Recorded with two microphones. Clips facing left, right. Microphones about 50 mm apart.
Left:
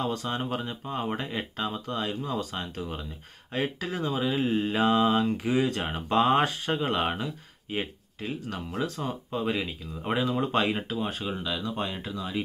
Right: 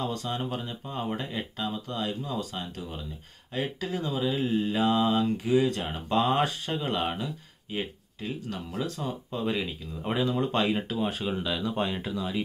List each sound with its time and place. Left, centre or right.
0.0 s speech: left
2.3 s speech: left; by 11.0 s centre
11.0 s speech: centre